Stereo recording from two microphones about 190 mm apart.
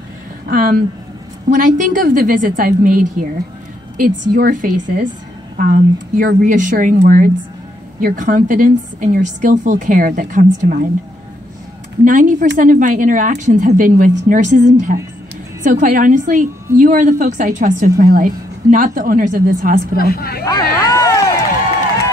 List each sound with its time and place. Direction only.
0.5 s a woman's voice: 50° right (ahead or behind)
12.0 s a woman's voice: 45° right (ahead or behind)
20.0 s speech: 55° left (ahead or behind)
20.4 s a sound: 20° left (ahead or behind)